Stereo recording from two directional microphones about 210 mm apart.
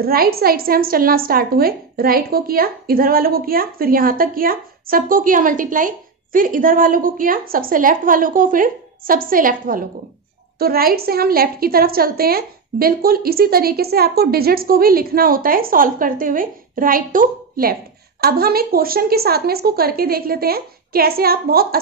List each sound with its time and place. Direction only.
0.0 s a woman's voice: 45° right (ahead or behind)